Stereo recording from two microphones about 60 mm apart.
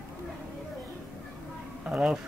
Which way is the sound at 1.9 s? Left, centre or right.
Centre.